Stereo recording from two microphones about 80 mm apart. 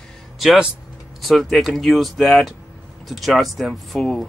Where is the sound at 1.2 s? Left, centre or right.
Centre.